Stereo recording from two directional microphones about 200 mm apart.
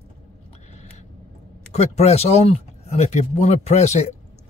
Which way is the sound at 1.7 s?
35° left (ahead or behind).